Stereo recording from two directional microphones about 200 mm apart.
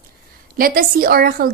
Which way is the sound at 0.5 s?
45° right (ahead or behind).